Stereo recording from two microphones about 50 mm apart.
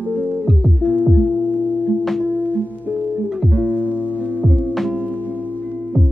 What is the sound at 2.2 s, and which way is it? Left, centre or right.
Music, right.